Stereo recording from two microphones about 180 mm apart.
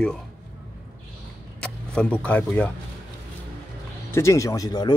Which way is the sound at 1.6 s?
5° left (ahead or behind).